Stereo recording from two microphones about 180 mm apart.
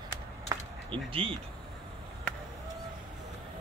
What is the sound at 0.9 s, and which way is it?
Speech, 30° right (ahead or behind).